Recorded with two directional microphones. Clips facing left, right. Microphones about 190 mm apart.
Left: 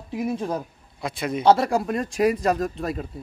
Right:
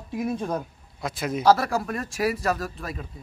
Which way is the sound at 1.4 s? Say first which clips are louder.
Left 2 dB; 30° left (ahead or behind).